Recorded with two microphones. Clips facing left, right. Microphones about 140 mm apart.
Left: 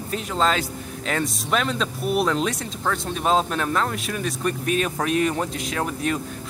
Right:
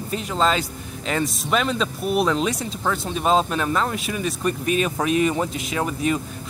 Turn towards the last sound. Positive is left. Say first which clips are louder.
# right 2 dB
turn(degrees=-5)  # may be behind; listen again after turning